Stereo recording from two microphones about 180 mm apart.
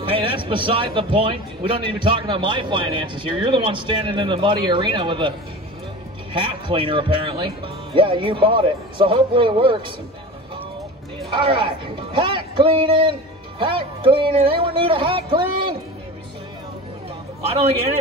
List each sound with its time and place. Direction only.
0.1 s a man's voice: 30° right (ahead or behind)
6.3 s a man's voice: 25° right (ahead or behind)
11.3 s a man's voice: 30° right (ahead or behind)